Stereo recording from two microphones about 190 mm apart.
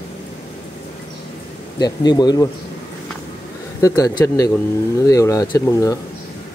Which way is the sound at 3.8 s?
15° left (ahead or behind).